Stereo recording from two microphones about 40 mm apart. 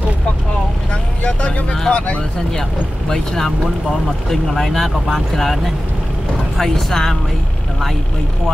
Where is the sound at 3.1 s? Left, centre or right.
Centre.